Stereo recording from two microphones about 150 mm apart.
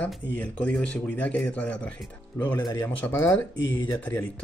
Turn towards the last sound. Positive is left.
turn(degrees=10)  # may be behind; listen again after turning